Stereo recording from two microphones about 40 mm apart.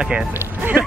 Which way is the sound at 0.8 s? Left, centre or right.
Right.